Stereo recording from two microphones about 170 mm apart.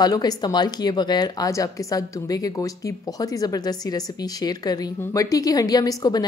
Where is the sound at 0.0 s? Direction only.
25° left (ahead or behind).